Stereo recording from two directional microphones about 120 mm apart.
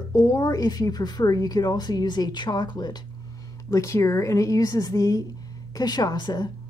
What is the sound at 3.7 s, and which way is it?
Speech, 25° left (ahead or behind).